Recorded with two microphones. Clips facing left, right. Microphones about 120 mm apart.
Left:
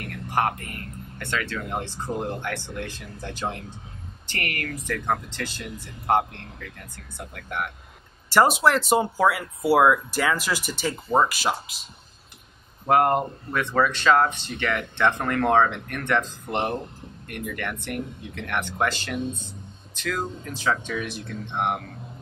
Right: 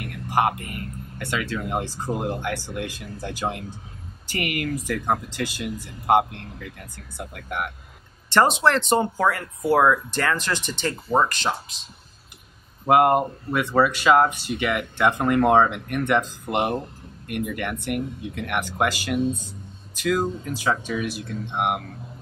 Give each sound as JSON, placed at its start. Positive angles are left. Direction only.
{"t": 0.0, "sound": "whispering", "side_deg": -10}
{"t": 1.2, "sound": "speech", "side_deg": -10}
{"t": 8.3, "sound": "speech", "side_deg": 5}
{"t": 12.8, "sound": "speech", "side_deg": -10}